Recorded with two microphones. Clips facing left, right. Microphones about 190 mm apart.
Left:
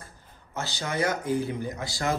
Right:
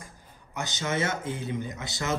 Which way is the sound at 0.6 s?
20° right (ahead or behind).